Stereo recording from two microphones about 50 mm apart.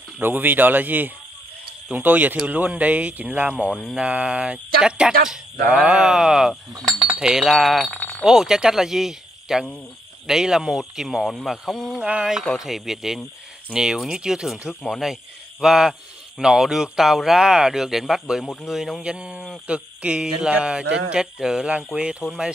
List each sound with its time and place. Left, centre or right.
0.2 s speech: right; by 8.0 s centre
8.2 s cricket: centre
10.2 s speech: centre
11.2 s speech: centre
12.0 s speech: centre
18.4 s speech: centre
18.7 s speech: centre
19.0 s speech: right